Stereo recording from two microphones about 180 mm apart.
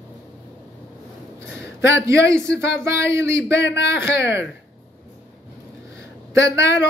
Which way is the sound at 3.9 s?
15° right (ahead or behind).